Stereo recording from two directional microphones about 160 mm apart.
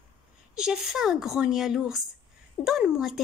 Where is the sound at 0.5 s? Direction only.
5° right (ahead or behind).